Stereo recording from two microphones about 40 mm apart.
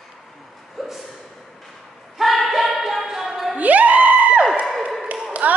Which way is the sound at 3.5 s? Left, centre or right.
Right.